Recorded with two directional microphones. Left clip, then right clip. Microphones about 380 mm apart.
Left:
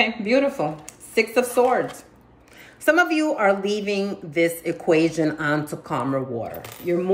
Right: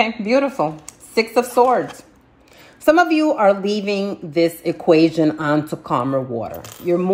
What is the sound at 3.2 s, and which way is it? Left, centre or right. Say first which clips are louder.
Speech: right 5 dB; centre.